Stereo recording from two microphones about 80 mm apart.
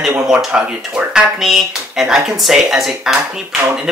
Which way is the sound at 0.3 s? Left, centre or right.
Centre.